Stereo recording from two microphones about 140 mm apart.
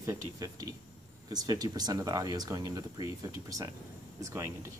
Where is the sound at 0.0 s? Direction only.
25° right (ahead or behind).